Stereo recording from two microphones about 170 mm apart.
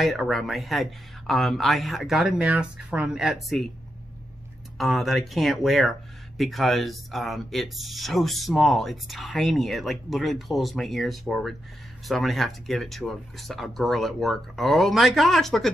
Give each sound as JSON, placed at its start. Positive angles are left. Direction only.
{"t": 0.0, "sound": "speech", "side_deg": 0}
{"t": 4.7, "sound": "speech", "side_deg": 0}